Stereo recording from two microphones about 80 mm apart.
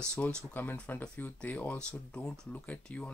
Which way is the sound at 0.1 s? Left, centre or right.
Centre.